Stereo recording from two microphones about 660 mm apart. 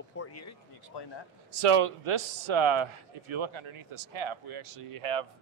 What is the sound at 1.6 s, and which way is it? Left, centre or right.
Speech, right.